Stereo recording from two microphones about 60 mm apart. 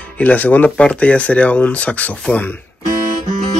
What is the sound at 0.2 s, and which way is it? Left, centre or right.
Speech, left.